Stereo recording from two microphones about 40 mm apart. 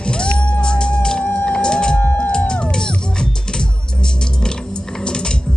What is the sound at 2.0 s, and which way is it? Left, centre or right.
Music, left.